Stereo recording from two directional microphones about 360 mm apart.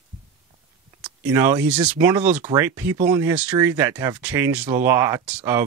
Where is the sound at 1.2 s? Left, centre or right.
Centre.